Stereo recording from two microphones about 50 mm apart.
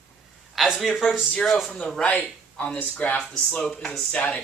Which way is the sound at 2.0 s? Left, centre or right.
Left.